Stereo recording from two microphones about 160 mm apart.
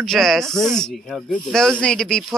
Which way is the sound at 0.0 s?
Centre (ahead or behind).